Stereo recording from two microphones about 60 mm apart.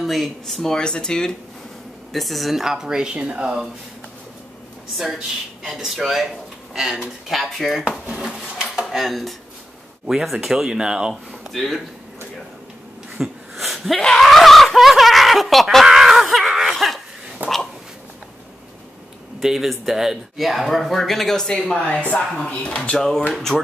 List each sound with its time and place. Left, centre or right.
0.0 s speech: centre
2.1 s speech: centre
4.9 s speech: centre
11.5 s speech: centre
13.2 s chuckle: centre
17.4 s a sound: right
19.4 s speech: centre; by 22.8 s left
22.8 s speech: centre